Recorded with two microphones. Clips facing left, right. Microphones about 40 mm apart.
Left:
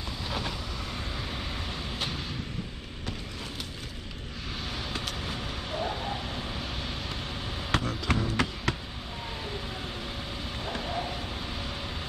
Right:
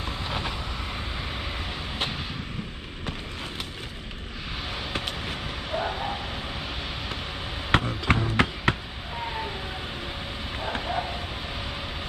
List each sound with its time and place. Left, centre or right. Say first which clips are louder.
0.0 s vehicle: right 3 dB; right
5.3 s vehicle: right 4 dB; right
7.7 s music: right 5 dB; right
10.6 s a sound: right 5 dB; right